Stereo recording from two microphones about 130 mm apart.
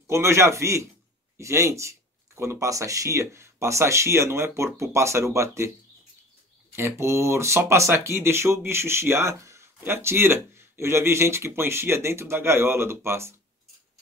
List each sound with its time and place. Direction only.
0.0 s speech: 20° right (ahead or behind)
6.7 s speech: 20° right (ahead or behind)